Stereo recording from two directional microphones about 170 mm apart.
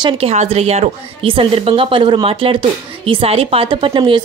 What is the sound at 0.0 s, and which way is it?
A woman's voice, 35° right (ahead or behind).